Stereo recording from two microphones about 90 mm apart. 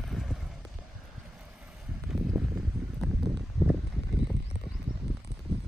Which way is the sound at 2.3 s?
10° right (ahead or behind).